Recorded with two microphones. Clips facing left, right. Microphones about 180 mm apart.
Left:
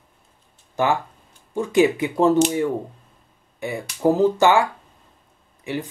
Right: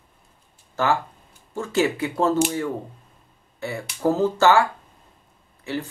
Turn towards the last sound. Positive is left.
turn(degrees=15)  # may be behind; listen again after turning